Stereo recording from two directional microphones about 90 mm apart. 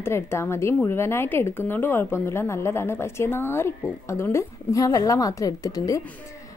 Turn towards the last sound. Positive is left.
turn(degrees=40)  # may be behind; listen again after turning